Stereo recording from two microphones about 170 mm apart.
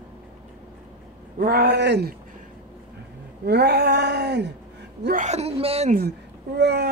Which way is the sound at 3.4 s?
75° right (ahead or behind).